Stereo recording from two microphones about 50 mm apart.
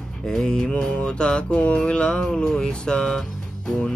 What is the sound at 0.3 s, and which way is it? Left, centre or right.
Music, centre.